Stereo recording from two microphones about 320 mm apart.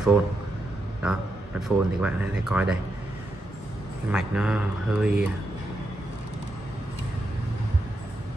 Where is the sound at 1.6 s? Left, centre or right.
Centre.